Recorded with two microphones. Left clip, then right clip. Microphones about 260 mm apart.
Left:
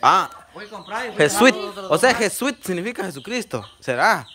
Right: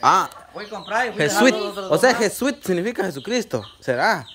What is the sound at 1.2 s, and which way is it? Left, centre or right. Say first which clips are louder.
Speech: left 4 dB; centre.